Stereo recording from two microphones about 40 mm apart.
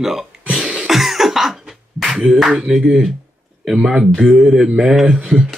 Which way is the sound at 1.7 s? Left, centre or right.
Centre.